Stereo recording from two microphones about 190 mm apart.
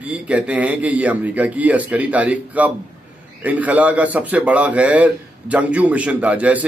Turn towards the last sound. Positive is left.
turn(degrees=-5)  # may be behind; listen again after turning